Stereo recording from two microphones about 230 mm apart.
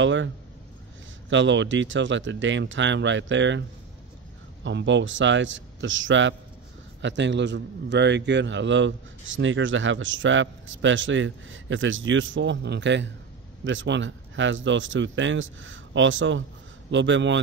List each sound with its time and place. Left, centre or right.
0.0 s a man's voice: right
1.3 s a man's voice: right
4.6 s a man's voice: right